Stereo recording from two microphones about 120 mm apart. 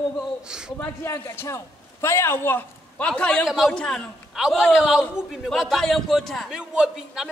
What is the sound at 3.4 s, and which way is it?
A man's voice, centre (ahead or behind).